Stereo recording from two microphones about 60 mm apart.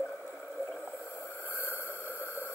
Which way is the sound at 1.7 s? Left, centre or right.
Left.